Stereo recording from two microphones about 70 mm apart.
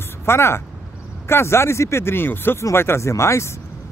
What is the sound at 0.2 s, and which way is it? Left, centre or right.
Speech, left.